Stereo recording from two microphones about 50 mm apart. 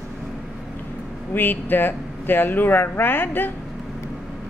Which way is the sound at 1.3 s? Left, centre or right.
Left.